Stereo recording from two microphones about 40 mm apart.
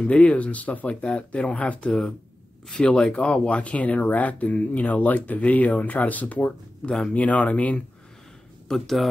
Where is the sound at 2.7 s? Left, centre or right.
Left.